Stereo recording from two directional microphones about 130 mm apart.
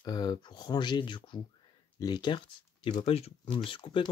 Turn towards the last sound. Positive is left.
turn(degrees=40)  # may be behind; listen again after turning